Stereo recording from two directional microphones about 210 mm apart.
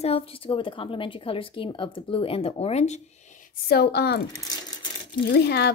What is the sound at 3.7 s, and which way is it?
Speech, 50° left (ahead or behind).